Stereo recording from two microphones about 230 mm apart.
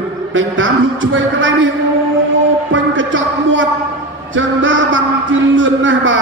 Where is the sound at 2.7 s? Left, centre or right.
Right.